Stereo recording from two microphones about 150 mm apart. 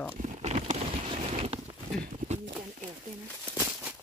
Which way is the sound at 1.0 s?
40° right (ahead or behind).